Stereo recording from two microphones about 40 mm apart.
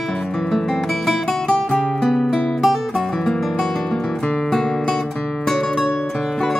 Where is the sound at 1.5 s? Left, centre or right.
Left.